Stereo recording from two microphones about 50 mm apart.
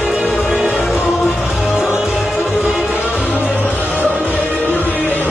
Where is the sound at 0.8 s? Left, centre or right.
Centre.